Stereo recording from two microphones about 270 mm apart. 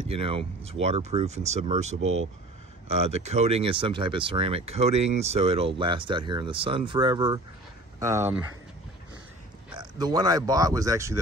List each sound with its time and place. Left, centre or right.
0.1 s speech: right
9.8 s speech: centre